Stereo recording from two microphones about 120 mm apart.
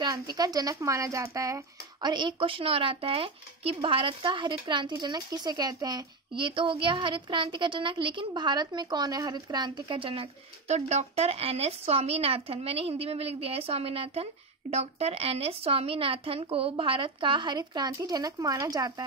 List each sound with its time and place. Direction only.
0.0 s a woman's voice: 35° right (ahead or behind)
2.0 s speech: 40° right (ahead or behind)